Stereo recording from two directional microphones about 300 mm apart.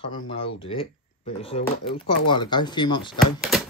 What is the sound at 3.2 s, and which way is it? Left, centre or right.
Speech, centre.